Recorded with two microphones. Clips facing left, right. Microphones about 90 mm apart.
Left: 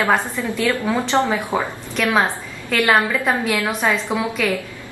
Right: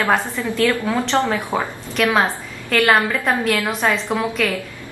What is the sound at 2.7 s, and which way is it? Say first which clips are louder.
A woman's voice: right 1 dB; centre (ahead or behind).